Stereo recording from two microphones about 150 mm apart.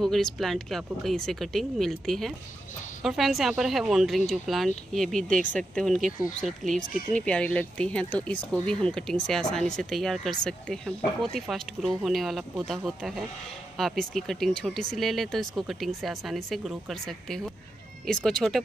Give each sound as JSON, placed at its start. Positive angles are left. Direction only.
{"t": 0.0, "sound": "speech", "side_deg": 0}
{"t": 11.3, "sound": "speech", "side_deg": 0}